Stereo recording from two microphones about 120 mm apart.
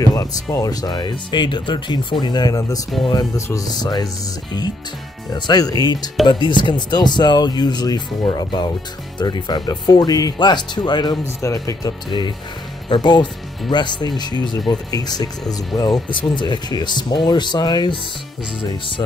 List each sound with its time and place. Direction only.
0.0 s speech: 30° left (ahead or behind)
5.3 s speech: 35° left (ahead or behind)